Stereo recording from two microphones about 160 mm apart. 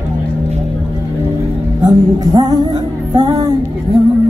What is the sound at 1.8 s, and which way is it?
Music, 25° right (ahead or behind).